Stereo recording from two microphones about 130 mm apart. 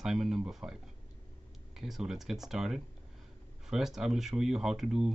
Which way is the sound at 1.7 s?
5° right (ahead or behind).